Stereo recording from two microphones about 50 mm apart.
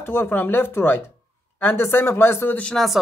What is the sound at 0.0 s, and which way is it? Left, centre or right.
Speech, left.